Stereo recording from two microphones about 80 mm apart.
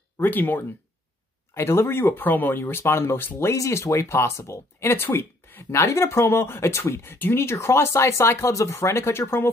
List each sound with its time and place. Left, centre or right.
0.2 s speech: left
1.5 s speech: left